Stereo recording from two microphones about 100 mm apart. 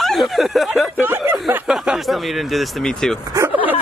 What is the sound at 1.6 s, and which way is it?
Speech, 10° right (ahead or behind).